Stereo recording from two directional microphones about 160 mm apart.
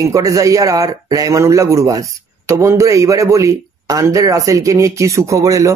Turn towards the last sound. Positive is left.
turn(degrees=-20)  # may be behind; listen again after turning